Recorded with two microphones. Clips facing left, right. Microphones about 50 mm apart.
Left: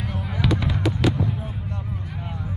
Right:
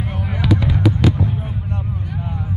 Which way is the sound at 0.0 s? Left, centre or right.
Right.